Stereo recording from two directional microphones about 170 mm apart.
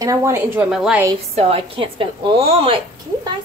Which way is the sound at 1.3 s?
35° right (ahead or behind).